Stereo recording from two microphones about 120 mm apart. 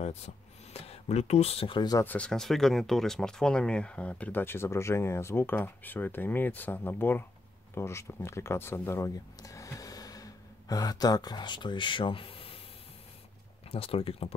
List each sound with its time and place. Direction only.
0.7 s speech: 60° left (ahead or behind)
2.0 s speech: 10° left (ahead or behind); by 12.5 s 50° left (ahead or behind)
13.7 s speech: 55° left (ahead or behind)